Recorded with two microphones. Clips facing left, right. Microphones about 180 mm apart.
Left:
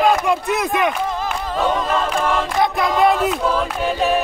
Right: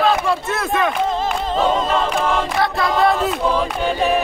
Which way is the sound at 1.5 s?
25° right (ahead or behind).